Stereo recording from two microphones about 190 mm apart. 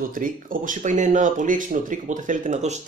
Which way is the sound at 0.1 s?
45° right (ahead or behind).